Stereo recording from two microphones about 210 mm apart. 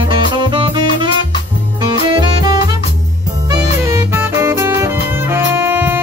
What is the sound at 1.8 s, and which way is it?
Saxophone, 20° right (ahead or behind).